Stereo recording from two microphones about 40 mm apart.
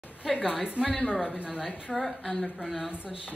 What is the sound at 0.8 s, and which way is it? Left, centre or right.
Speech, left.